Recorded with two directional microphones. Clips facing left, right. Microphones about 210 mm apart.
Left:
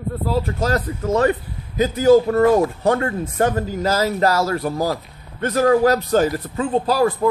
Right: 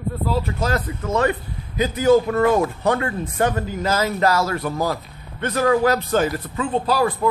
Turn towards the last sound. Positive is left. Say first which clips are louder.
# left 2 dB
turn(degrees=40)  # may be behind; listen again after turning